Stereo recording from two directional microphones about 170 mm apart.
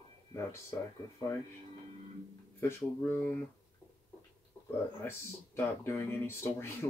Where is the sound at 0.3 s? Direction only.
15° left (ahead or behind).